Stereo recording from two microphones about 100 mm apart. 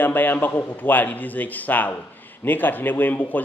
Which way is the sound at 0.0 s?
20° left (ahead or behind).